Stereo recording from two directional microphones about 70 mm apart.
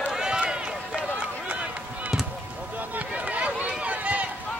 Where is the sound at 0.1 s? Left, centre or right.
Centre.